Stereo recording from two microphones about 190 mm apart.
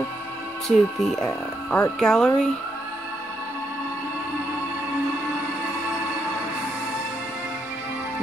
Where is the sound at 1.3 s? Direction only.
20° left (ahead or behind).